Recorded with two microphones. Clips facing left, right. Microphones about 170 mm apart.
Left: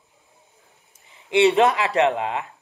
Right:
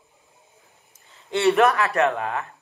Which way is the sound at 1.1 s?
15° left (ahead or behind).